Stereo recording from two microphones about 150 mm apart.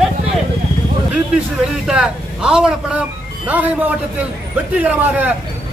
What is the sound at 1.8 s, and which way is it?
Speech, 5° right (ahead or behind).